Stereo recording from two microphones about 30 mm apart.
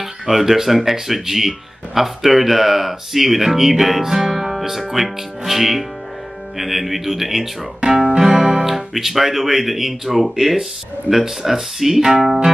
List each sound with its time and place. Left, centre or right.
0.0 s speech: centre
7.8 s guitar: right
8.3 s music: right
8.6 s speech: centre